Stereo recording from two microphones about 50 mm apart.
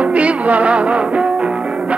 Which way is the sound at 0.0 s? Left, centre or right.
Right.